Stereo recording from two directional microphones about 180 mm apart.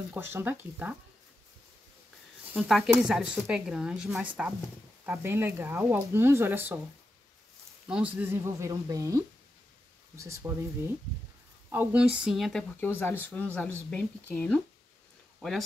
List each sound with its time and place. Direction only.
0.1 s speech: 15° right (ahead or behind)
2.5 s speech: 5° right (ahead or behind)
7.9 s speech: 10° right (ahead or behind); by 14.6 s 10° left (ahead or behind)